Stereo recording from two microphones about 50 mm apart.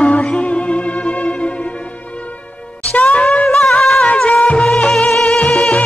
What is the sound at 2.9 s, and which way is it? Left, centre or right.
Music, left.